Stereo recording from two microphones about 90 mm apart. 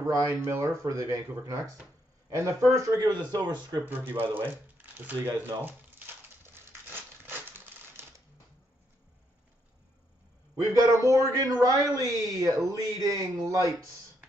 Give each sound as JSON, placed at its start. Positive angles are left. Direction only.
{"t": 0.0, "sound": "speech", "side_deg": -40}
{"t": 3.0, "sound": "speech", "side_deg": -50}
{"t": 3.8, "sound": "speech", "side_deg": -25}
{"t": 4.3, "sound": "a sound", "side_deg": -20}
{"t": 10.6, "sound": "speech", "side_deg": -35}